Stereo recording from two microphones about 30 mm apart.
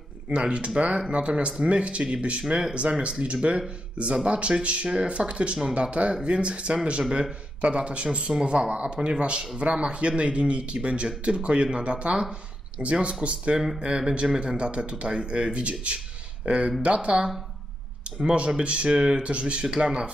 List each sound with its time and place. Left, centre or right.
0.3 s speech: right
2.4 s speech: right
2.7 s speech: right
4.8 s speech: right
5.1 s speech: right
13.7 s speech: right
14.6 s speech: right
18.6 s speech: right